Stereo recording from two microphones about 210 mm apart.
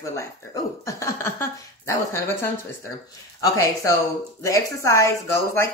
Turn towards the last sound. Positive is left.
turn(degrees=10)  # may be behind; listen again after turning